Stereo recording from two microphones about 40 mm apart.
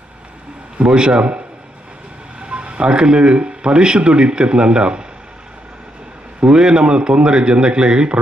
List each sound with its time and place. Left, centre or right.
0.8 s a man's voice: centre
2.4 s speech: right
6.4 s a man's voice: centre